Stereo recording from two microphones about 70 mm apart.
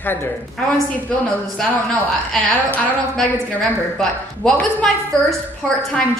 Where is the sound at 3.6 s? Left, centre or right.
Centre.